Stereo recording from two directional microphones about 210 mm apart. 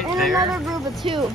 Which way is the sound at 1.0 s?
25° right (ahead or behind).